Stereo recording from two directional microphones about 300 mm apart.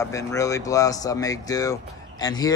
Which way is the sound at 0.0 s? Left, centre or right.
Centre.